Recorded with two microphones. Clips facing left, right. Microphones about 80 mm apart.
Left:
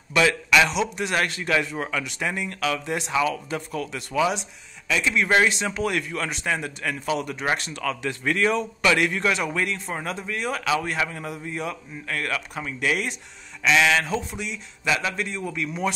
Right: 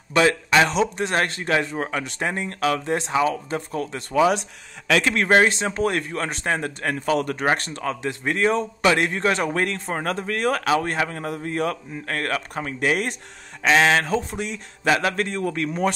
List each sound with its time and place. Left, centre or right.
0.1 s speech: right
4.8 s speech: right
5.3 s speech: right